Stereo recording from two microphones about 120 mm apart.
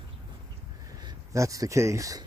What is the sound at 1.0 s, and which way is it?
Speech, 25° right (ahead or behind).